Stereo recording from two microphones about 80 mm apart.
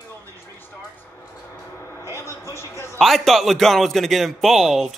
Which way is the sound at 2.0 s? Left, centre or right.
Left.